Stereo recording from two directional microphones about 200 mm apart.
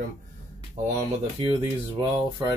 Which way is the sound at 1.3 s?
25° right (ahead or behind).